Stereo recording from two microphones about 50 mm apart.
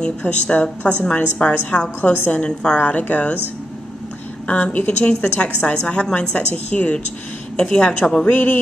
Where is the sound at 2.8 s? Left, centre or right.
Left.